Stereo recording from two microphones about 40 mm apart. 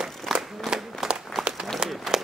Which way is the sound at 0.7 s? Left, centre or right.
Centre.